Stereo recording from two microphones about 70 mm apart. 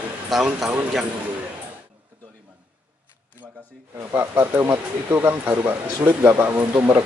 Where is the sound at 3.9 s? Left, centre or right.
Right.